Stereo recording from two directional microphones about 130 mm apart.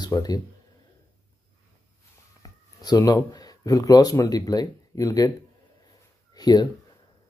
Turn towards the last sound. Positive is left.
turn(degrees=30)  # may be behind; listen again after turning